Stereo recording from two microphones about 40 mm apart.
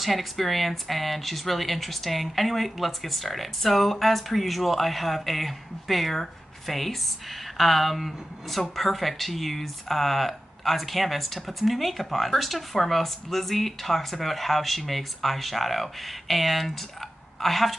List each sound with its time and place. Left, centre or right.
0.0 s speech: centre